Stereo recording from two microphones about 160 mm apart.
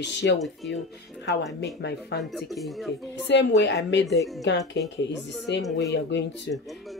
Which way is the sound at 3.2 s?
90° left.